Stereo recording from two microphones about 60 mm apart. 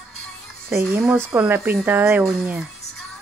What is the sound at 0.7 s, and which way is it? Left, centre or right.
Speech, right.